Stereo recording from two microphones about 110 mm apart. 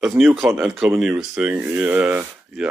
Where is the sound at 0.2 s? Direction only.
Centre (ahead or behind).